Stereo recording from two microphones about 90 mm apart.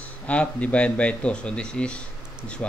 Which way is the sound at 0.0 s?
15° left (ahead or behind).